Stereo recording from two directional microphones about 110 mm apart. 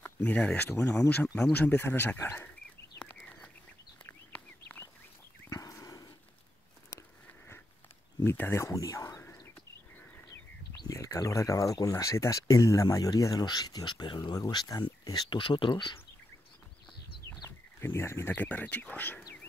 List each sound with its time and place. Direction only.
0.0 s speech: 15° left (ahead or behind)
3.1 s a sound: 15° left (ahead or behind)
4.0 s bird: 20° left (ahead or behind)
5.5 s livestock: 30° left (ahead or behind)
8.2 s speech: 20° left (ahead or behind)
10.7 s speech: 30° left (ahead or behind); by 16.0 s 45° left (ahead or behind)
17.3 s speech: 20° left (ahead or behind)